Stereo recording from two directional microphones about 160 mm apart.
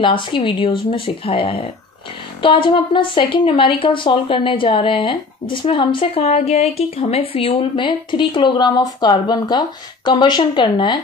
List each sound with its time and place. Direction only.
0.0 s a woman's voice: 30° left (ahead or behind)